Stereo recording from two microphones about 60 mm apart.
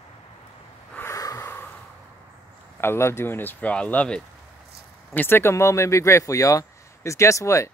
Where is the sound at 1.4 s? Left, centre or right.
Left.